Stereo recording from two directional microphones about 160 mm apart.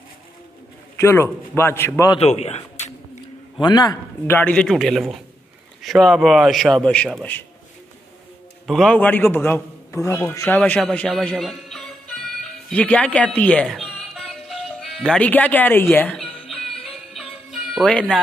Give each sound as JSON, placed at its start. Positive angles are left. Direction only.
{"t": 0.9, "sound": "a man's voice", "side_deg": 15}
{"t": 2.1, "sound": "a man's voice", "side_deg": 45}
{"t": 3.5, "sound": "a man's voice", "side_deg": 25}
{"t": 4.3, "sound": "speech", "side_deg": 10}
{"t": 8.6, "sound": "a man's voice", "side_deg": 5}
{"t": 16.2, "sound": "music", "side_deg": 0}